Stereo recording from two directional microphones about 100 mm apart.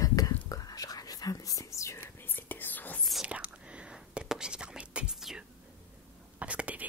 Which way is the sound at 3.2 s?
10° right (ahead or behind).